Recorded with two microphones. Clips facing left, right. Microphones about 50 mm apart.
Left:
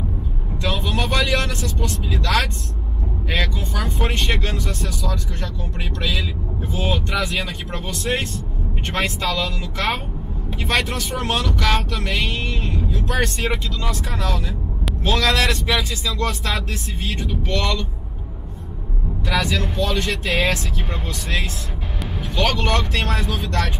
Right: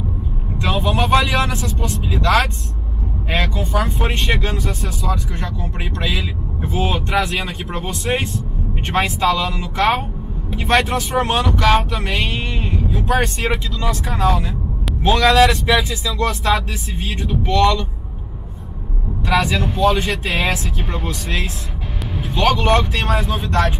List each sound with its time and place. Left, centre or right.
0.6 s vehicle: centre
1.2 s speech: centre
19.2 s speech: centre